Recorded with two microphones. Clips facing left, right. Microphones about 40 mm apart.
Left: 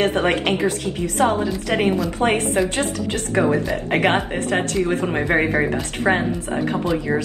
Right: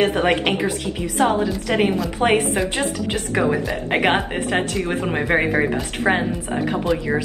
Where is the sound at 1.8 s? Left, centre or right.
Centre.